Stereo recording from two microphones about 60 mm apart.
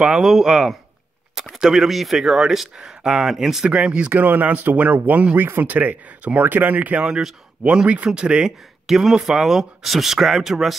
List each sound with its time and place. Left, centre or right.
0.0 s speech: centre
3.7 s speech: centre
4.1 s speech: right; by 10.8 s centre